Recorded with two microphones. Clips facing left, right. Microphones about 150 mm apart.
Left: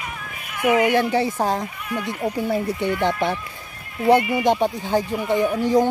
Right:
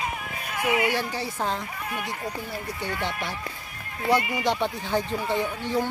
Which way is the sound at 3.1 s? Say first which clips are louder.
Left 10 dB; 60° left (ahead or behind).